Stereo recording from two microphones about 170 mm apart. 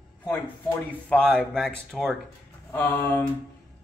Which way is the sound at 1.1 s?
5° left (ahead or behind).